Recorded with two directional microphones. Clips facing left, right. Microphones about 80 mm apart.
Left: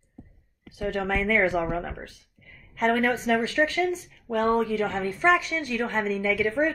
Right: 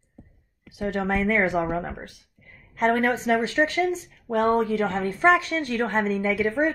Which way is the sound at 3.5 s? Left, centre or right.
Right.